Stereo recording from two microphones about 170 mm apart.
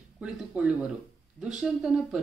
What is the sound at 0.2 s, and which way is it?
Speech, 5° right (ahead or behind).